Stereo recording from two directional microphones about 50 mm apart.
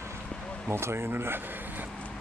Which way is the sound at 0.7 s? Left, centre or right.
Right.